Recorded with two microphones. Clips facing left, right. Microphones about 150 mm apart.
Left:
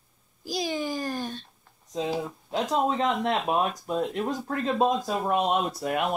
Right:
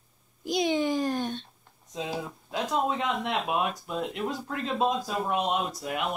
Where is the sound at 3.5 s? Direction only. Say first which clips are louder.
Left 3 dB; 35° left (ahead or behind).